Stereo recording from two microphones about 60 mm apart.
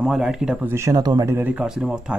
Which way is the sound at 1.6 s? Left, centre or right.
Centre.